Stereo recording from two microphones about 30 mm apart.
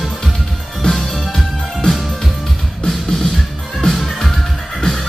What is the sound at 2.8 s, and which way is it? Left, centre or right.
Music, centre.